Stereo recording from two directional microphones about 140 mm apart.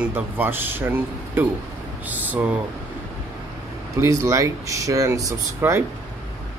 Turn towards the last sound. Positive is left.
turn(degrees=-20)  # may be behind; listen again after turning